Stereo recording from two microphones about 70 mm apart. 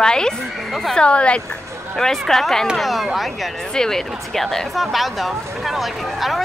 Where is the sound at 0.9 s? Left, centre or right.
Centre.